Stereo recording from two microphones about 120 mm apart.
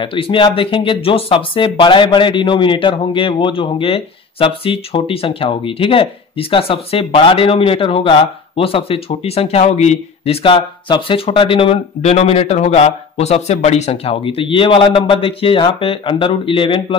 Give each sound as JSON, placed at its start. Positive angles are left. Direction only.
{"t": 0.0, "sound": "speech", "side_deg": 45}
{"t": 12.0, "sound": "speech", "side_deg": 60}